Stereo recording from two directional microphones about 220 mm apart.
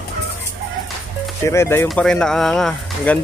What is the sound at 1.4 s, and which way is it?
Speech, 10° left (ahead or behind).